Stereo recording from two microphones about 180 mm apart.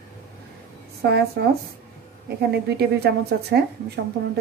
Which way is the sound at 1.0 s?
65° right (ahead or behind).